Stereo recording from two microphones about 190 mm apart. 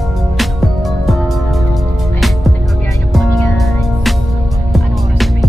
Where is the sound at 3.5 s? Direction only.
Centre (ahead or behind).